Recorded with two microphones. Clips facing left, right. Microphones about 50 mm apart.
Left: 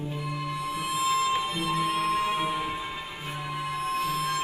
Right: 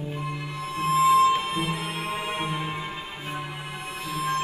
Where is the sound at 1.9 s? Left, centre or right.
Centre.